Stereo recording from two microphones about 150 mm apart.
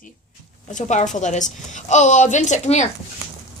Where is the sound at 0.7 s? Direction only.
55° left (ahead or behind).